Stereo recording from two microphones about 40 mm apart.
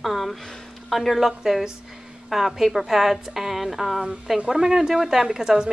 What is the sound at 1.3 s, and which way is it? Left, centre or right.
A woman's voice, centre.